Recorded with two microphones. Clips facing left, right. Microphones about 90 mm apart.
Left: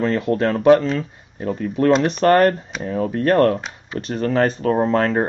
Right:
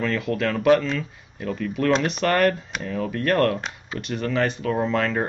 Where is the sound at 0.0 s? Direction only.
35° left (ahead or behind).